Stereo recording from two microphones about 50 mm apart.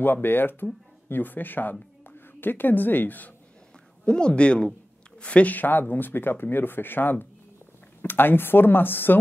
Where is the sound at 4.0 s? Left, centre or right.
Centre.